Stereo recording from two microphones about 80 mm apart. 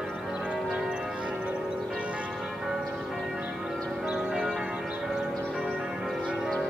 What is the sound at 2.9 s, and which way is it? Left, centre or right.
Church bell, centre.